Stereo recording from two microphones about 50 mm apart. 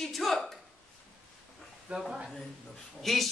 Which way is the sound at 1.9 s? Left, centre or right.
Centre.